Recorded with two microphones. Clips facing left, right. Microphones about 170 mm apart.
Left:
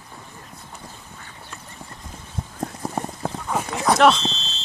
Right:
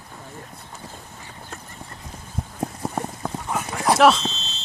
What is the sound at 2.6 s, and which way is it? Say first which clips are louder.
Clip-clop: even; 10° right (ahead or behind).